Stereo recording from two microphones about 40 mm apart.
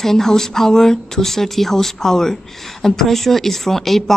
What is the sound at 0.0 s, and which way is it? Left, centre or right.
Speech, centre.